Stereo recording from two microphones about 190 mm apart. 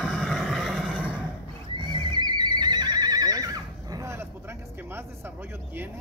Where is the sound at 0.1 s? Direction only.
Centre (ahead or behind).